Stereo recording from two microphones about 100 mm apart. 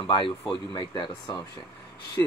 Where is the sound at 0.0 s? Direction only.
50° left (ahead or behind).